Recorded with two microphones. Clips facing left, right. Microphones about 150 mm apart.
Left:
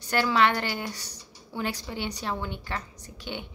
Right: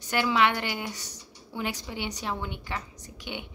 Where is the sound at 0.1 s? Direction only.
15° right (ahead or behind).